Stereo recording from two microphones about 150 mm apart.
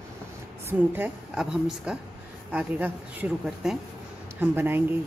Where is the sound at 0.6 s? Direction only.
15° right (ahead or behind).